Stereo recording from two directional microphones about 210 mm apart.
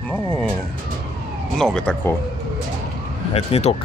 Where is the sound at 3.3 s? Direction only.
30° left (ahead or behind).